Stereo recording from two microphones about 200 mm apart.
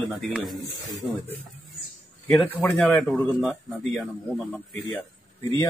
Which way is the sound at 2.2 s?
5° left (ahead or behind).